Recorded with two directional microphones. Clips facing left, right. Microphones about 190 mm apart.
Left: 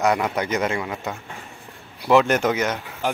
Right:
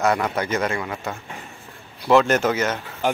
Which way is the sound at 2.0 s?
10° left (ahead or behind).